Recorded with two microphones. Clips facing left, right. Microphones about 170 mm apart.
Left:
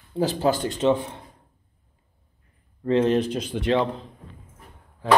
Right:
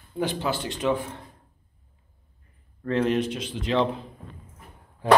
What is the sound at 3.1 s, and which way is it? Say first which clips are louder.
Speech: left 3 dB; 35° left (ahead or behind).